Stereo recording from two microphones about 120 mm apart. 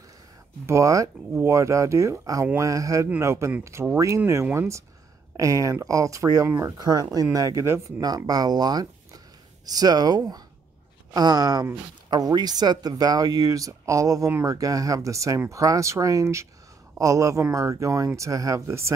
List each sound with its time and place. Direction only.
0.7 s speech: 25° right (ahead or behind)
8.3 s speech: 35° right (ahead or behind)